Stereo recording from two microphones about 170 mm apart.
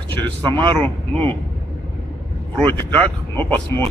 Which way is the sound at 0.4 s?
30° right (ahead or behind).